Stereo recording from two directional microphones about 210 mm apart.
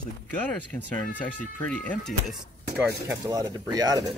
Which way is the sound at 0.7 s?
5° left (ahead or behind).